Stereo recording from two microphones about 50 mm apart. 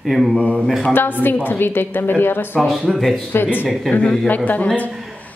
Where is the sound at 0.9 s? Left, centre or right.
Left.